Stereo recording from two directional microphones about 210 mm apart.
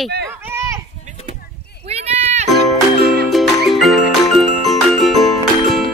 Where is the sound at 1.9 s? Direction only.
30° right (ahead or behind).